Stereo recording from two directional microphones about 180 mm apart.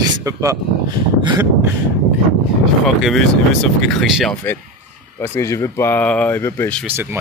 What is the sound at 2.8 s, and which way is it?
Speech, centre (ahead or behind).